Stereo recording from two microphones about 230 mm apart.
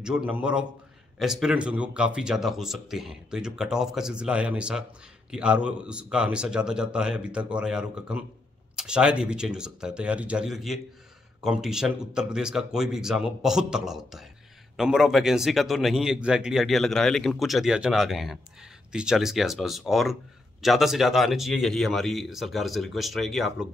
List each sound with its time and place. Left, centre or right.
0.0 s speech: centre